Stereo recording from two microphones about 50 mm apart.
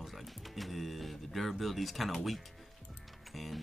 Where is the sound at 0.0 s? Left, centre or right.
Centre.